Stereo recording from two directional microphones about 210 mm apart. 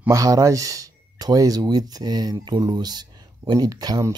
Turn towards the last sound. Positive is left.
turn(degrees=-20)  # may be behind; listen again after turning